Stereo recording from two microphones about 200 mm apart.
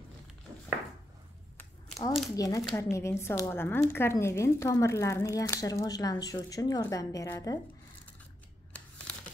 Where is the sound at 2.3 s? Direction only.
15° left (ahead or behind).